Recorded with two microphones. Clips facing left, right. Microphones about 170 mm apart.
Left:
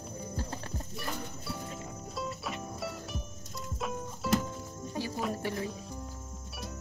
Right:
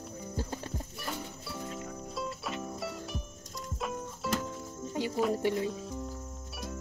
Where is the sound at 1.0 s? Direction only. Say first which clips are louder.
Left 3 dB; centre (ahead or behind).